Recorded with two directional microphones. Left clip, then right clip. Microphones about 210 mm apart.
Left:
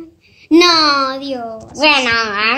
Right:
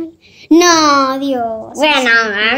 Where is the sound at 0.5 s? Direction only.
25° right (ahead or behind).